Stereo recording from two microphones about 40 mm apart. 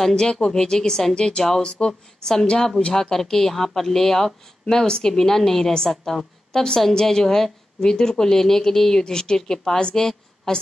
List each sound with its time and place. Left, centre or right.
0.1 s a woman's voice: left